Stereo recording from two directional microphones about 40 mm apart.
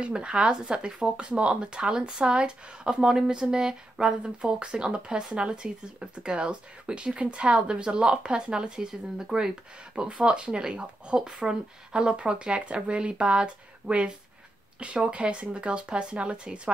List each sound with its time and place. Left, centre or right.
0.0 s speech: right